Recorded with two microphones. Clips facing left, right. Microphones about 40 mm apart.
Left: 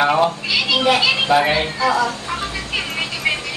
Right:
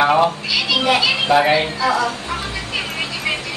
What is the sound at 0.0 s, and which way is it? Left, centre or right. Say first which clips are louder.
Speech: right 1 dB; centre.